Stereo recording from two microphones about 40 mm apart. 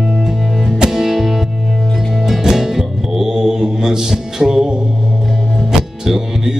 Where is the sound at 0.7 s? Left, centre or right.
Centre.